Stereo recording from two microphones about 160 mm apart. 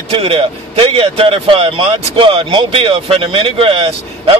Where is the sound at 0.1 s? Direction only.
35° right (ahead or behind).